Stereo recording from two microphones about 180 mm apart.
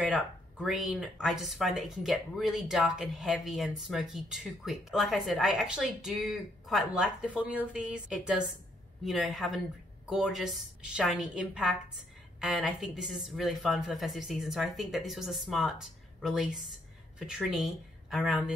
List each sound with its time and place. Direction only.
0.1 s a woman's voice: centre (ahead or behind)